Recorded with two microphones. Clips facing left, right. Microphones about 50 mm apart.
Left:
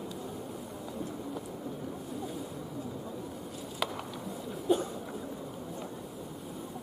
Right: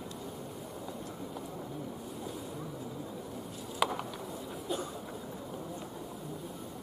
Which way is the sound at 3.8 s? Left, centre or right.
Centre.